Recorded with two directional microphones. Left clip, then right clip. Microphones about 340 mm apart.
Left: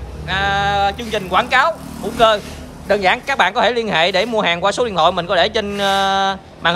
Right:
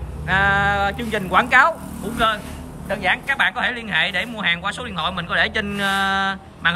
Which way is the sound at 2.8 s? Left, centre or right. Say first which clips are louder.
Left 5 dB; centre.